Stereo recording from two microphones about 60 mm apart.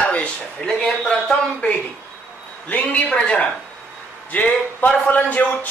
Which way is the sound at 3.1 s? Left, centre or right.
Left.